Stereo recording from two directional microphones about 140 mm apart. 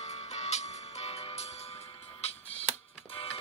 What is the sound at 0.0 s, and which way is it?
Music, 55° left (ahead or behind).